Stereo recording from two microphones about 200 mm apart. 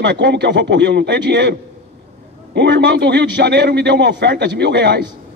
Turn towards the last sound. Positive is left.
turn(degrees=-60)  # may be behind; listen again after turning